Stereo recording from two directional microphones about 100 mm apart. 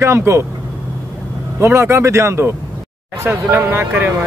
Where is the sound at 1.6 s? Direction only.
25° right (ahead or behind).